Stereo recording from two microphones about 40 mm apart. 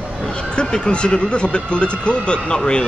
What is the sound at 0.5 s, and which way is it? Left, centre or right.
Speech, left.